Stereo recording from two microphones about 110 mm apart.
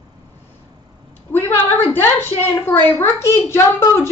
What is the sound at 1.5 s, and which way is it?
A woman's voice, 20° left (ahead or behind).